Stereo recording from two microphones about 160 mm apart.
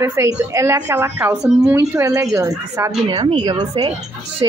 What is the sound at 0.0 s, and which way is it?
A woman's voice, 20° right (ahead or behind).